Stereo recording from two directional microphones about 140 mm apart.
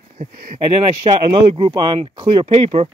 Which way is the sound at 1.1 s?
45° right (ahead or behind).